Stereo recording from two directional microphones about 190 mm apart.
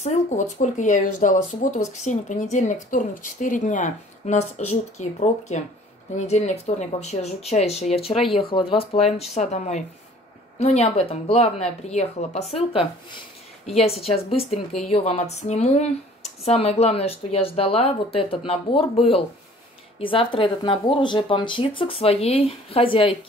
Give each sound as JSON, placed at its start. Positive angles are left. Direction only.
{"t": 0.0, "sound": "speech", "side_deg": 40}
{"t": 13.7, "sound": "speech", "side_deg": 30}